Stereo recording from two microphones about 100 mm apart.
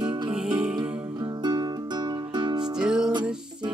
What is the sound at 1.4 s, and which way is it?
Music, 45° right (ahead or behind).